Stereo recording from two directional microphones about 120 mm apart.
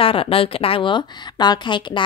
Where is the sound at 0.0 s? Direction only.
50° left (ahead or behind).